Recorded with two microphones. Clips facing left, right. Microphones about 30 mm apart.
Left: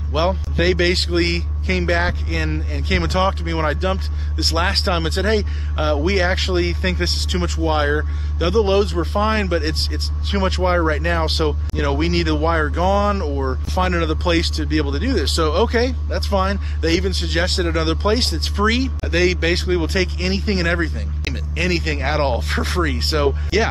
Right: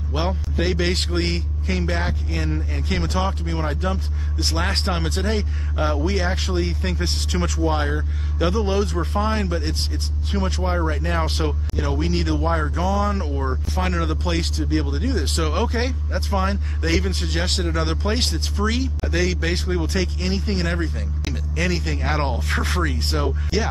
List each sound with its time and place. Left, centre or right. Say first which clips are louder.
0.1 s speech: left 6 dB; left
7.6 s speech: left 6 dB; left
9.2 s speech: left 6 dB; left
10.6 s speech: left 6 dB; left
17.4 s speech: left 4 dB; left
18.1 s speech: left 4 dB; centre
18.4 s speech: left 5 dB; left
19.0 s speech: left 6 dB; left
22.9 s speech: left 6 dB; left